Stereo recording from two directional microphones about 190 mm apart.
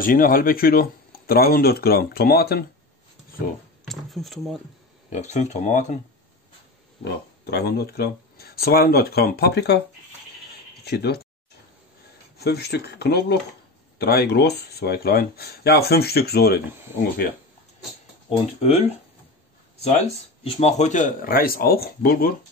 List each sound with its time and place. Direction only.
0.0 s speech: 50° left (ahead or behind)
3.8 s speech: centre (ahead or behind)
5.1 s speech: 40° left (ahead or behind)
7.1 s speech: 60° left (ahead or behind)
10.8 s speech: 60° left (ahead or behind)
12.4 s speech: 55° left (ahead or behind)
18.3 s speech: 30° left (ahead or behind); by 22.3 s 50° left (ahead or behind)